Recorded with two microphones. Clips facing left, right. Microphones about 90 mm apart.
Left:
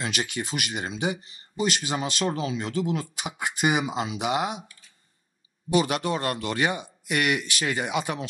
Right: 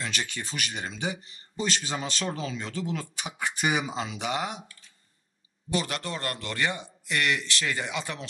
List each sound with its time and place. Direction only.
0.0 s speech: 15° left (ahead or behind)